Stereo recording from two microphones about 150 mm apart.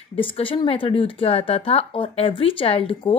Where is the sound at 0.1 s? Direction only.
35° left (ahead or behind).